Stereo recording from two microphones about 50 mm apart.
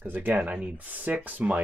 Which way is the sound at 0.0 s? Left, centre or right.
Right.